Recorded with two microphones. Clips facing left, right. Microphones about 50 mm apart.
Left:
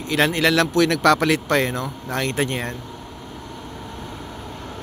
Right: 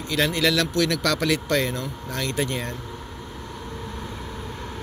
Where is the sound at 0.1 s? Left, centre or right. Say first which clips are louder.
Left 4 dB; left.